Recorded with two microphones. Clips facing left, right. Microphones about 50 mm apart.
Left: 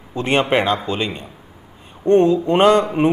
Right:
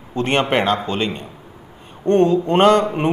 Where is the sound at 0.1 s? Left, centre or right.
Centre.